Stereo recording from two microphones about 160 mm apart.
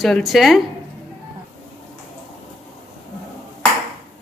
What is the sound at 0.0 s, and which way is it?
Speech, centre (ahead or behind).